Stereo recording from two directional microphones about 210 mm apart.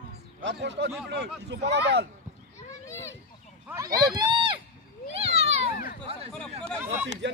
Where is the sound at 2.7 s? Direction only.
15° left (ahead or behind).